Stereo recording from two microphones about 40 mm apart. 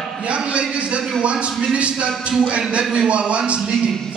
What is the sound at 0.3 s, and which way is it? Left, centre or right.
A man's voice, right.